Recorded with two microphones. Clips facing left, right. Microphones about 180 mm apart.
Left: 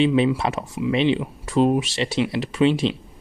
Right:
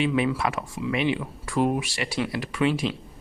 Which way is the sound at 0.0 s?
25° left (ahead or behind).